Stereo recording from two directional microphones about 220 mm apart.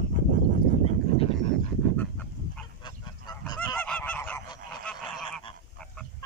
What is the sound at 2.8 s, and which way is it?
Goose, 20° left (ahead or behind).